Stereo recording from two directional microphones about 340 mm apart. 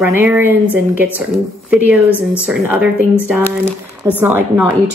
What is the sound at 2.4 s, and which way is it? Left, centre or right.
A woman's voice, centre.